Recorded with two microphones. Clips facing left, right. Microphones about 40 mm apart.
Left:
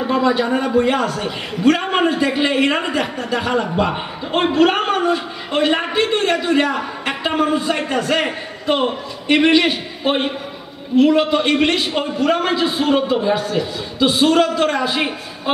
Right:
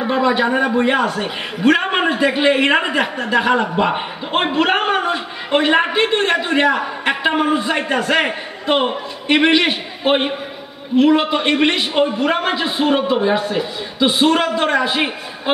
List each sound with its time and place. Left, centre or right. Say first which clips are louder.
0.0 s a man's voice: right 1 dB; right